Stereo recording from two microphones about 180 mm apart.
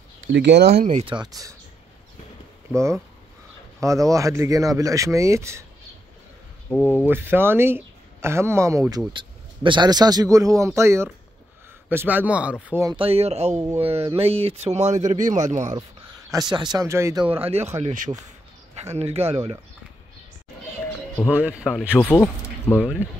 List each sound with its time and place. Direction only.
0.3 s speech: 75° right (ahead or behind)
1.0 s speech: 25° right (ahead or behind)
2.7 s speech: 15° right (ahead or behind)
6.7 s speech: 10° left (ahead or behind)
7.1 s speech: 10° right (ahead or behind)
12.9 s speech: 30° right (ahead or behind)
16.3 s speech: 20° right (ahead or behind)
21.5 s speech: 5° right (ahead or behind)
22.0 s speech: 15° left (ahead or behind)